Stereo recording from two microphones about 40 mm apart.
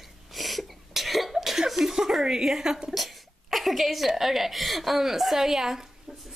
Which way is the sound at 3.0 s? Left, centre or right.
Centre.